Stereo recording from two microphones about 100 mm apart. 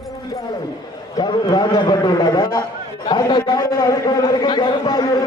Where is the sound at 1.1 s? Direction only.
45° left (ahead or behind).